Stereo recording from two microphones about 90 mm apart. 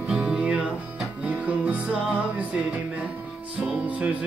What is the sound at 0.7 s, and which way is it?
Guitar, 5° right (ahead or behind).